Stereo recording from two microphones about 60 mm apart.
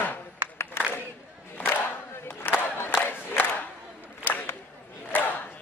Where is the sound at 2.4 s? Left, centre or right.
Left.